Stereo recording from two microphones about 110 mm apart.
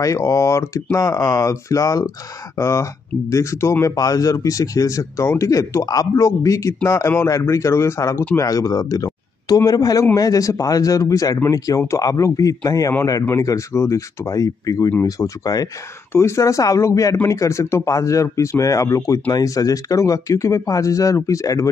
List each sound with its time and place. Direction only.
0.0 s a man's voice: 30° left (ahead or behind)